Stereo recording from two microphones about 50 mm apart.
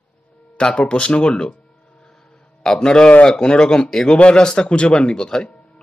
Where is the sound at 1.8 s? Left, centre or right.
Centre.